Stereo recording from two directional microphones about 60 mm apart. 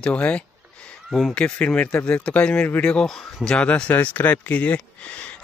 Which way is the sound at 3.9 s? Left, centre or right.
Left.